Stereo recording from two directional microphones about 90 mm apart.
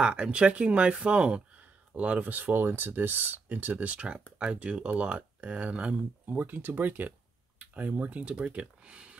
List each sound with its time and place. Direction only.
0.0 s speech: 15° right (ahead or behind)